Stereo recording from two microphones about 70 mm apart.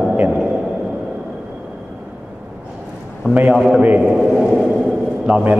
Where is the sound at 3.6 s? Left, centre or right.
Centre.